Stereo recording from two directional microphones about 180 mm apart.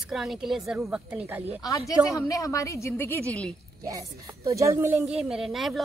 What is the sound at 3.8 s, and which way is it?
A woman's voice, 20° right (ahead or behind).